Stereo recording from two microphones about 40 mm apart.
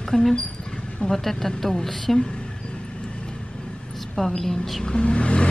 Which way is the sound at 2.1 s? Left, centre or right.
Left.